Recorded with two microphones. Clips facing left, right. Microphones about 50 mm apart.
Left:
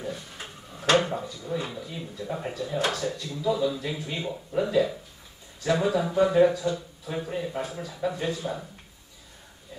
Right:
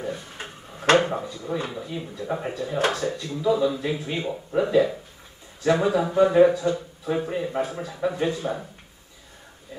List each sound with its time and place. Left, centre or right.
0.0 s drawer open or close: right
3.0 s a man's voice: right